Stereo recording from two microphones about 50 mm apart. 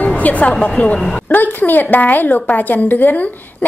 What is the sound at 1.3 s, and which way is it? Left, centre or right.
A woman's voice, left.